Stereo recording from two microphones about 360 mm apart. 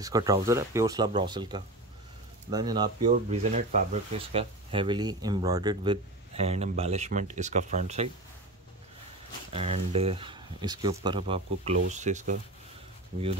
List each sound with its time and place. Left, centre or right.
0.0 s speech: centre
9.5 s speech: centre